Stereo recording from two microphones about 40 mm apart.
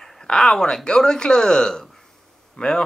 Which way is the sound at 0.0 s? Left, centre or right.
Centre.